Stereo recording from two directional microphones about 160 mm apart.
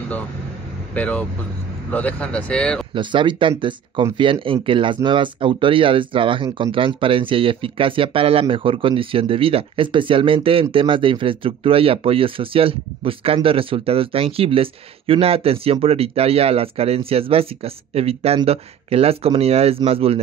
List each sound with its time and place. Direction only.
0.9 s speech: 10° left (ahead or behind)
2.9 s speech: 30° right (ahead or behind)